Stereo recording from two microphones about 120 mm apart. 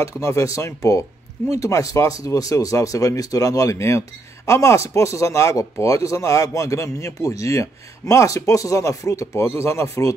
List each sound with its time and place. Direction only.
0.0 s speech: 25° left (ahead or behind)